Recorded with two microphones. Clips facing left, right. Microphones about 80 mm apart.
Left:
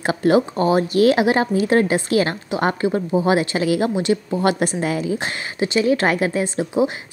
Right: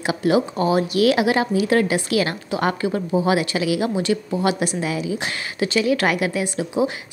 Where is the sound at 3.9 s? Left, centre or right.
Left.